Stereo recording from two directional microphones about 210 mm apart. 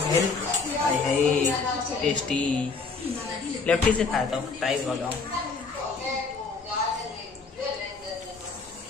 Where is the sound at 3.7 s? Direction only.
5° left (ahead or behind).